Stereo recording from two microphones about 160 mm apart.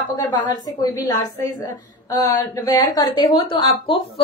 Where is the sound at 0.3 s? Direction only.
25° left (ahead or behind).